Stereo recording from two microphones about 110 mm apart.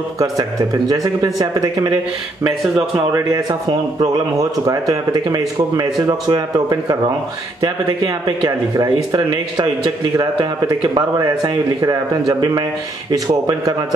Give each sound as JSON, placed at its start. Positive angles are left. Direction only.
{"t": 0.2, "sound": "speech", "side_deg": -35}
{"t": 3.1, "sound": "speech", "side_deg": -35}